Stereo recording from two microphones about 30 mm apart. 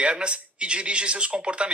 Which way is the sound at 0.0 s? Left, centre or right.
Right.